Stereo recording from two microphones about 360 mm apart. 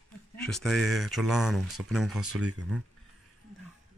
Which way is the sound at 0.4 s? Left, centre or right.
Centre.